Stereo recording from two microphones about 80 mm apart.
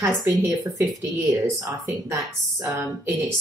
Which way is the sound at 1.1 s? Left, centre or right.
Right.